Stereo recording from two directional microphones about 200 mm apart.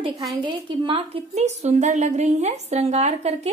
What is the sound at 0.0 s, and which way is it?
A woman's voice, 20° right (ahead or behind).